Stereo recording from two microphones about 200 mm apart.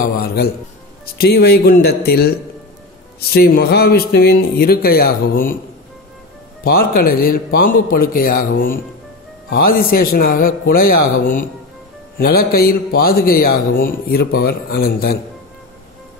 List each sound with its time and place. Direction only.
0.0 s a man's voice: 50° left (ahead or behind)
6.6 s speech: 45° left (ahead or behind)